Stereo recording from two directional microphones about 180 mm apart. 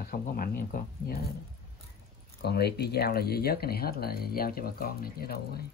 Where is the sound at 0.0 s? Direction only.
55° left (ahead or behind).